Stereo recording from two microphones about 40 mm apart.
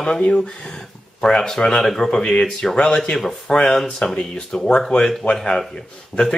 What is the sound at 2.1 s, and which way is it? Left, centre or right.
Speech, left.